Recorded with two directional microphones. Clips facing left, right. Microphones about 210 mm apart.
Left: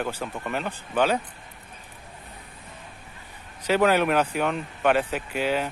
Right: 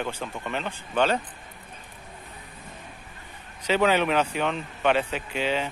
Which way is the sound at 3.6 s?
10° left (ahead or behind).